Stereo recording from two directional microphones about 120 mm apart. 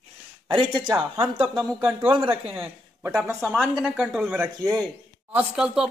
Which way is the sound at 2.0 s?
45° right (ahead or behind).